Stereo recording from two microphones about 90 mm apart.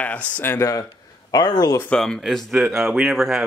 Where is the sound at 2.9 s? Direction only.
10° right (ahead or behind).